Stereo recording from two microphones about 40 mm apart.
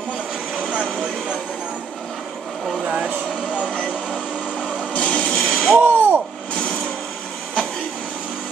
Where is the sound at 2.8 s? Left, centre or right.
Right.